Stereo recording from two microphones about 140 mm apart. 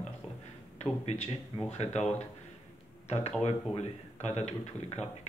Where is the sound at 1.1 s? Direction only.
55° left (ahead or behind).